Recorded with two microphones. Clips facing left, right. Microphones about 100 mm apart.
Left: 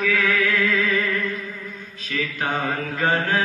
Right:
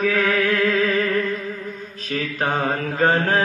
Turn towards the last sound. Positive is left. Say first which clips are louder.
# right 3 dB
turn(degrees=-35)  # may be behind; listen again after turning